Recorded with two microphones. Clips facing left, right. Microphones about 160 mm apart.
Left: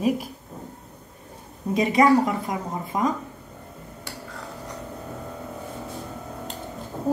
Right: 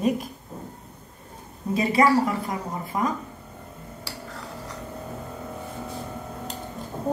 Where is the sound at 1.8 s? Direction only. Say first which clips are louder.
Left 2 dB; 20° left (ahead or behind).